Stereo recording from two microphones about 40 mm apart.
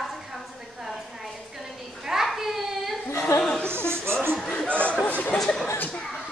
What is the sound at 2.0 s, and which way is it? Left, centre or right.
Children playing, centre.